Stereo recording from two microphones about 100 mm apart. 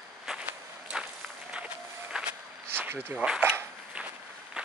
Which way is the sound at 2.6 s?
20° right (ahead or behind).